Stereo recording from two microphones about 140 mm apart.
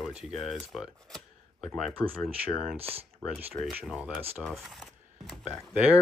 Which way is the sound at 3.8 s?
Centre (ahead or behind).